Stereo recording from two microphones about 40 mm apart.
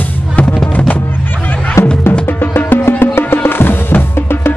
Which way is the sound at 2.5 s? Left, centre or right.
Left.